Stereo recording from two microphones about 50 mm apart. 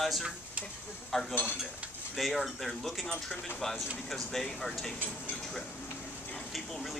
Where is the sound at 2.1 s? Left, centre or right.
Centre.